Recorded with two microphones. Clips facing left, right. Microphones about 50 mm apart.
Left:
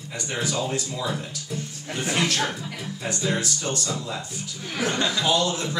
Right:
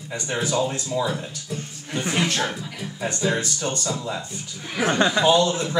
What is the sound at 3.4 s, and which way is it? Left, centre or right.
A man's voice, right.